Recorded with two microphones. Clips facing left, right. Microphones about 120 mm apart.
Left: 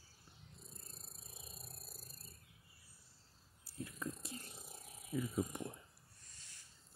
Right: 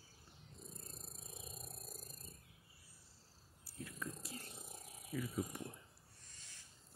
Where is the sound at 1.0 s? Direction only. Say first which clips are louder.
Right 4 dB; 45° right (ahead or behind).